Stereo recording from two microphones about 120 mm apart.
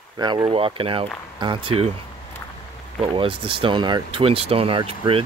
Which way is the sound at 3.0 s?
50° right (ahead or behind).